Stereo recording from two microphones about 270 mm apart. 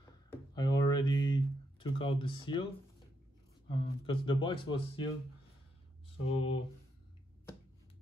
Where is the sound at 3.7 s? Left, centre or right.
Centre.